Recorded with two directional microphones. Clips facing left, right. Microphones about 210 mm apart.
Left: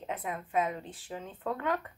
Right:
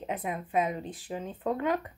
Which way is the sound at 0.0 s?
15° right (ahead or behind).